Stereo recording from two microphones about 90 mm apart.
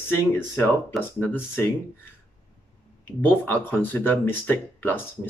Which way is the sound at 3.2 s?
20° left (ahead or behind).